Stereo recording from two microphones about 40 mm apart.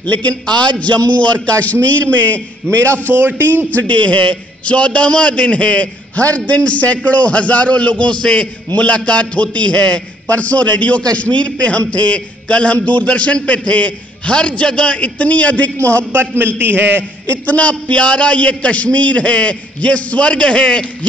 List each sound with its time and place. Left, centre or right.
0.0 s a man's voice: left
3.2 s a man's voice: right
3.7 s a man's voice: left
16.5 s a man's voice: right
17.5 s a man's voice: left